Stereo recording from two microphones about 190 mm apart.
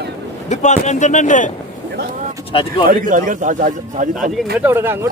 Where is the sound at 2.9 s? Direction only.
45° right (ahead or behind).